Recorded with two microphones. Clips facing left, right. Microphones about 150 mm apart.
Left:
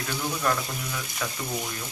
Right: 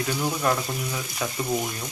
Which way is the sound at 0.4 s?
20° right (ahead or behind).